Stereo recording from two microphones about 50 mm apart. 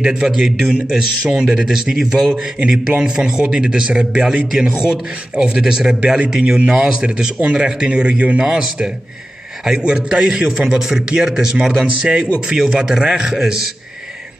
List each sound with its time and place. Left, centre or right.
0.0 s a man's voice: centre
12.0 s a man's voice: centre